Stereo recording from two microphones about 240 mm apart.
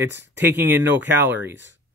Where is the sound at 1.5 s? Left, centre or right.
Right.